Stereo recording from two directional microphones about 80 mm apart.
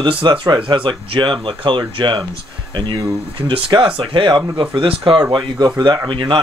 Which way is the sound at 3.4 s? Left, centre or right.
Right.